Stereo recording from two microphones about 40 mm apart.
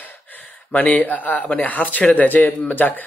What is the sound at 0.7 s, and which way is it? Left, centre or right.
A man's voice, left.